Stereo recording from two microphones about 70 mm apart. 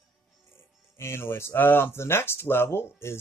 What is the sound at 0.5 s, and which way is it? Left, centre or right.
Speech, left.